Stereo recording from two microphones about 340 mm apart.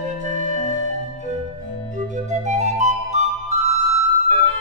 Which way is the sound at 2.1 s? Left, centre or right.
Right.